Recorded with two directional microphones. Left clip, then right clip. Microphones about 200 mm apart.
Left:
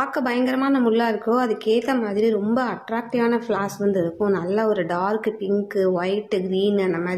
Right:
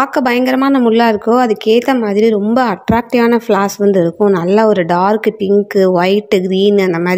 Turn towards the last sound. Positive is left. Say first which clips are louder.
# right 10 dB
turn(degrees=-40)  # may be behind; listen again after turning